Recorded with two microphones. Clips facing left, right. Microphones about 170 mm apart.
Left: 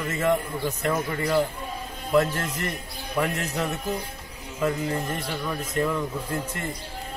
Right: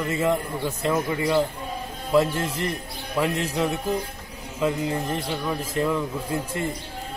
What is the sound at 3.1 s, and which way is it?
Speech, 5° right (ahead or behind).